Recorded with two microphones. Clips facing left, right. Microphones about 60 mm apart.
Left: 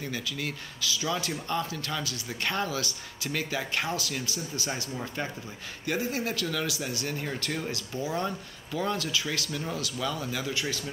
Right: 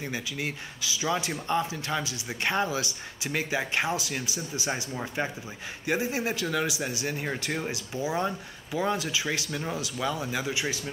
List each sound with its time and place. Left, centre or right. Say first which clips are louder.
0.0 s speech: right 1 dB; right